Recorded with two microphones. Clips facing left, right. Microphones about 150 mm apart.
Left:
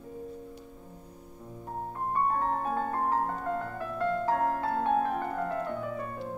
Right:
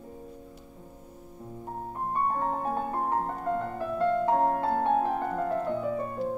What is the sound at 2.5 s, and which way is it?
Music, 20° right (ahead or behind).